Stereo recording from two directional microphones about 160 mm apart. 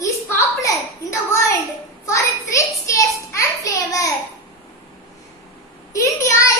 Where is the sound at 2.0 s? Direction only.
20° left (ahead or behind).